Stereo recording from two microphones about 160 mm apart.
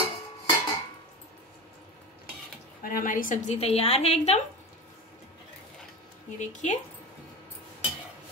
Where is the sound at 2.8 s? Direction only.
60° left (ahead or behind); by 4.4 s 40° left (ahead or behind).